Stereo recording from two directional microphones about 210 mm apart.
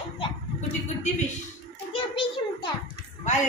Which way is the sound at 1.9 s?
25° left (ahead or behind).